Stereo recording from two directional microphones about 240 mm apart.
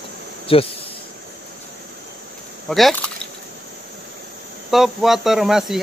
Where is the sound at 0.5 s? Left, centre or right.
Left.